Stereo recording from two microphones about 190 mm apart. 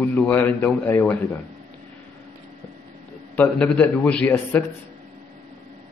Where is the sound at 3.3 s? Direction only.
5° left (ahead or behind).